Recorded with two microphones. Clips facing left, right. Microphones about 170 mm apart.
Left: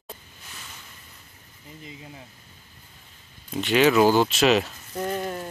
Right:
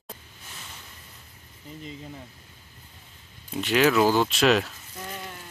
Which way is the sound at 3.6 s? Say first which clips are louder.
Left 2 dB; centre (ahead or behind).